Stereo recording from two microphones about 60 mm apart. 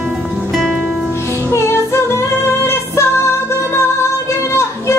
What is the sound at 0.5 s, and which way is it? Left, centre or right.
Music, centre.